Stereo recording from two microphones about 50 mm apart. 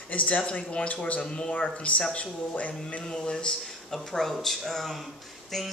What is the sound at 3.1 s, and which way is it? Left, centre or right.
Speech, centre.